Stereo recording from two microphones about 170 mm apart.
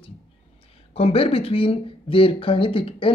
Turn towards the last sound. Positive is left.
turn(degrees=30)  # may be behind; listen again after turning